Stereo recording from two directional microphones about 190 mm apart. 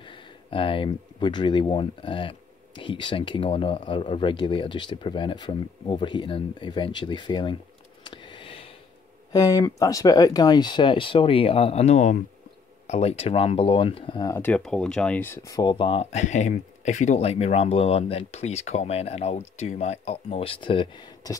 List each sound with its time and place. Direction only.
0.0 s speech: 25° left (ahead or behind)
8.0 s a sound: 25° left (ahead or behind)
9.3 s speech: 20° left (ahead or behind)
14.3 s speech: 10° left (ahead or behind)